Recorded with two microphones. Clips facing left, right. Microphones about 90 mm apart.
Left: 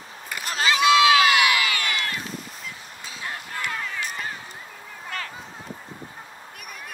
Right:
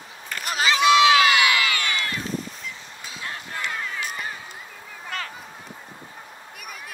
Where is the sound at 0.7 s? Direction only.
25° right (ahead or behind).